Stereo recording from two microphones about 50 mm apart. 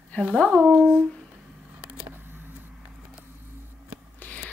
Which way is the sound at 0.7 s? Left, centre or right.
Right.